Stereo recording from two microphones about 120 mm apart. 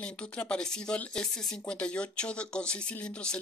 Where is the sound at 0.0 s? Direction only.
10° left (ahead or behind).